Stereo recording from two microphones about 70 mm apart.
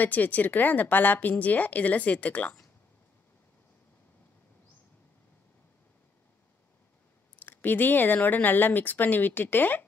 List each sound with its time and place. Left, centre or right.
0.0 s speech: left
7.3 s speech: left